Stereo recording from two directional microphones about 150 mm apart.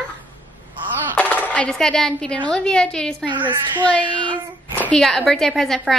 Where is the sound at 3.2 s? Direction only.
30° right (ahead or behind).